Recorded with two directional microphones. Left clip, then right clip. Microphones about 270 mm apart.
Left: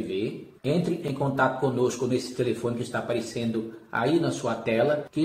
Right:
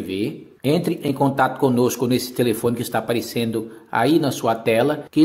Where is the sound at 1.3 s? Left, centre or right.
Right.